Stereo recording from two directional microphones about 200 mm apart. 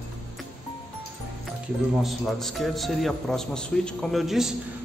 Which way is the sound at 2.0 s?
Centre (ahead or behind).